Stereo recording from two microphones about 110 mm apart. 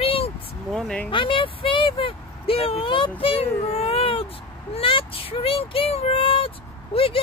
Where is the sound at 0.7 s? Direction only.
5° left (ahead or behind).